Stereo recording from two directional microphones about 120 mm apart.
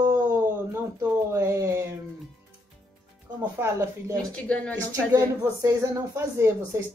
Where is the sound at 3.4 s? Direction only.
20° right (ahead or behind).